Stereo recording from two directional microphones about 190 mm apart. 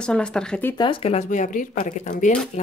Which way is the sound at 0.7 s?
25° left (ahead or behind).